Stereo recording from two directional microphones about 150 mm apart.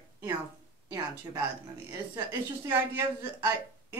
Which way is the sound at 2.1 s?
15° right (ahead or behind).